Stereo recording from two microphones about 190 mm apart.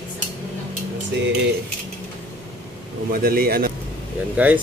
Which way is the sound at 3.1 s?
50° right (ahead or behind).